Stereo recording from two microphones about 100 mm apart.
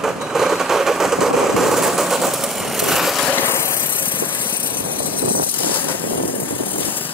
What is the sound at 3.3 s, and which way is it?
Vehicle, 20° left (ahead or behind).